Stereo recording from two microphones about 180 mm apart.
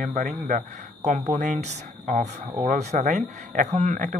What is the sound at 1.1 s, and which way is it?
Speech, 45° right (ahead or behind).